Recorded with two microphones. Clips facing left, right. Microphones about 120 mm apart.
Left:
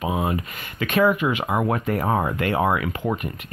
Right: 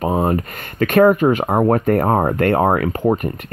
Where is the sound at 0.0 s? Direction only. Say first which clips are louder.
Right 6 dB; 45° right (ahead or behind).